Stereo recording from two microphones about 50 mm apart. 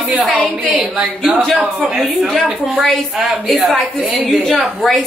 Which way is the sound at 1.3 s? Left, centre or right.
Right.